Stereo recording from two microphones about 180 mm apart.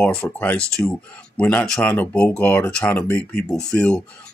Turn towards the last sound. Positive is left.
turn(degrees=5)  # may be behind; listen again after turning